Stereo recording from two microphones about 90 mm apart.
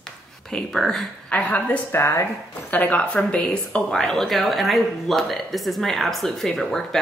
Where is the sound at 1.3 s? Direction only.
15° left (ahead or behind).